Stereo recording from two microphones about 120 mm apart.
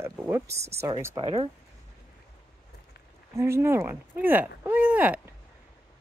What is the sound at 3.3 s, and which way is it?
Speech, 20° right (ahead or behind).